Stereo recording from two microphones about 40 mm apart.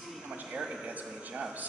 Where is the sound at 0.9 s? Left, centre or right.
Right.